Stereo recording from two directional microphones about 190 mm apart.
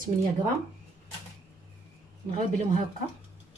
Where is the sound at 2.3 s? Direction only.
40° right (ahead or behind).